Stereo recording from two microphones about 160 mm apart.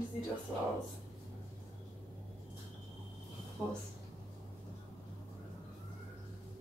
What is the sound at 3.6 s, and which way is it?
Speech, 5° left (ahead or behind).